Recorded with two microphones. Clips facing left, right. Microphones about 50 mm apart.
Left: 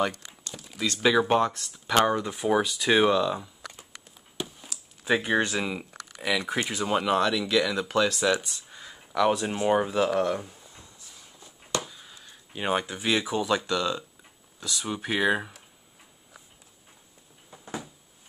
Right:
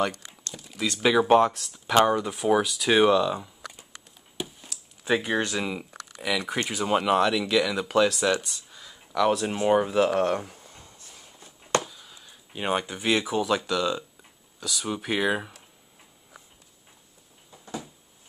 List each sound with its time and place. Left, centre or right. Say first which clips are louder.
0.0 s computer keyboard: even; centre
0.9 s speech: right 3 dB; centre
8.6 s a sound: left 2 dB; left
9.1 s speech: right 1 dB; centre
9.5 s speech: right 2 dB; centre
10.0 s a sound: right 2 dB; right
11.8 s speech: right 1 dB; centre